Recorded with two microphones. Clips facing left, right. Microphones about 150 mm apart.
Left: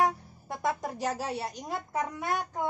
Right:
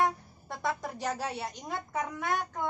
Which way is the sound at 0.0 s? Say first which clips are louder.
Left 2 dB; 15° left (ahead or behind).